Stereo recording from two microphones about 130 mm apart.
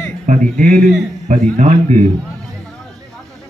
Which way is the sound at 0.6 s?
85° right.